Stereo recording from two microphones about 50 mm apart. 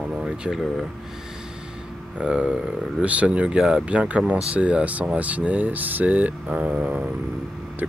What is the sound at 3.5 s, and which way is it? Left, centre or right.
Speech, centre.